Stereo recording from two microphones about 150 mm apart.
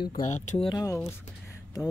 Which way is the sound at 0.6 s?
25° left (ahead or behind).